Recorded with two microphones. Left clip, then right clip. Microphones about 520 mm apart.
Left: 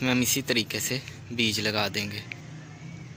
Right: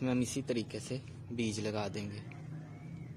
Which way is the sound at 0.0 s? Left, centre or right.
Right.